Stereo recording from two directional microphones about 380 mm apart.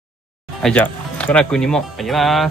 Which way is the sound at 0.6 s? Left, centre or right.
Centre.